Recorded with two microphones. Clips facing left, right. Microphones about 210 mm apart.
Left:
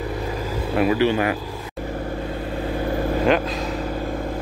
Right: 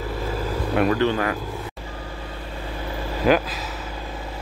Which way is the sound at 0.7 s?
10° left (ahead or behind).